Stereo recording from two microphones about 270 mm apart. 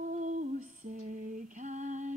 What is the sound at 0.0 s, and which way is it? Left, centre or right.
Female singing, right.